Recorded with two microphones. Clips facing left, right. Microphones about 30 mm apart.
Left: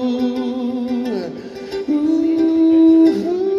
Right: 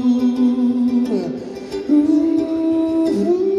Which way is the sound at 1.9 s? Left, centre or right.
Left.